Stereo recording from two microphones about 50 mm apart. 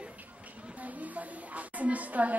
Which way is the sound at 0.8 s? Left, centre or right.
Right.